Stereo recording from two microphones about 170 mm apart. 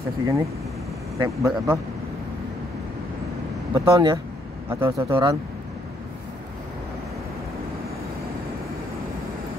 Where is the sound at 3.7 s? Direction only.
20° right (ahead or behind).